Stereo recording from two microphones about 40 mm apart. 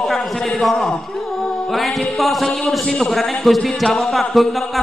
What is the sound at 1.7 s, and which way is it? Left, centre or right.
Music, centre.